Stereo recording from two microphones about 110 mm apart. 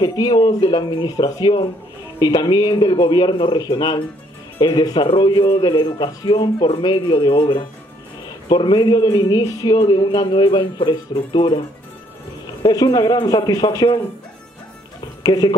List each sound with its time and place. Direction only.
0.0 s speech: 40° left (ahead or behind)
9.7 s speech: 50° left (ahead or behind)
12.6 s speech: 40° left (ahead or behind)
15.2 s speech: 40° left (ahead or behind)